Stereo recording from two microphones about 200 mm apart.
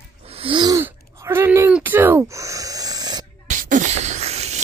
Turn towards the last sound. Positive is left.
turn(degrees=-35)  # may be behind; listen again after turning